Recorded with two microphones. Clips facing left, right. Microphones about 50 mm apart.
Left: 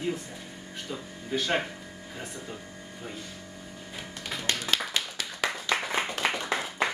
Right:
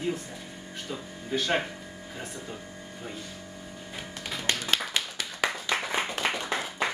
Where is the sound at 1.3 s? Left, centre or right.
Centre.